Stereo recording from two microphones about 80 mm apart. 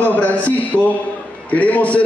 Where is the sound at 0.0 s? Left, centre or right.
Left.